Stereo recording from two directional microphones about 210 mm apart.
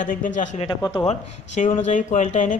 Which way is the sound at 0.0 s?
40° left (ahead or behind).